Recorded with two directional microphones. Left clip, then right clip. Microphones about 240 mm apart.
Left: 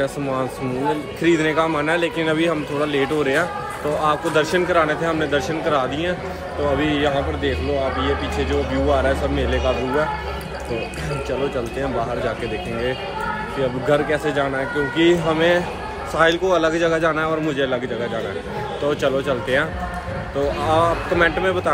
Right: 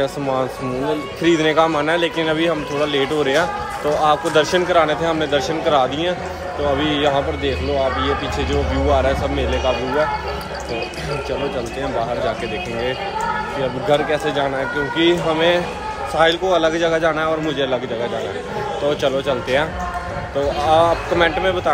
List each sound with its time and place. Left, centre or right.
0.0 s a man's voice: centre
13.8 s a man's voice: centre
18.9 s a man's voice: centre